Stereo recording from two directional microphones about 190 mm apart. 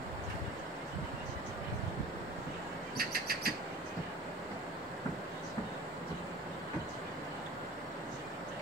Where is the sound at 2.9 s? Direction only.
55° right (ahead or behind).